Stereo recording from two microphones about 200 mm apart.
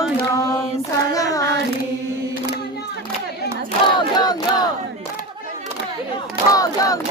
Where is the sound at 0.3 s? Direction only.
15° left (ahead or behind).